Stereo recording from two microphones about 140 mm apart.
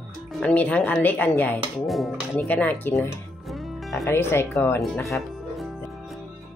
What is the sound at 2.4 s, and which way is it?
Speech, 15° left (ahead or behind).